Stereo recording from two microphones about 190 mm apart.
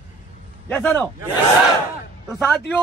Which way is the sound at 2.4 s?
5° left (ahead or behind).